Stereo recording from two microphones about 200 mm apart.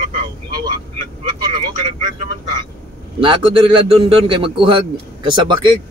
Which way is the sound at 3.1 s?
25° right (ahead or behind).